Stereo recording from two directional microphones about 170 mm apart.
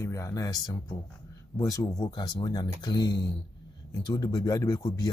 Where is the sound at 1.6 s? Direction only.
20° left (ahead or behind).